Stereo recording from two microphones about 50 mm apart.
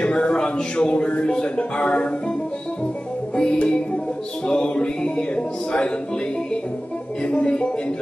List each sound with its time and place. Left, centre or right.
0.0 s speech: centre
3.3 s music: centre
4.5 s speech: centre
7.2 s speech: left